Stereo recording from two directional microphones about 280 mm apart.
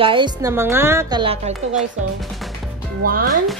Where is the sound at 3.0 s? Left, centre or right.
Right.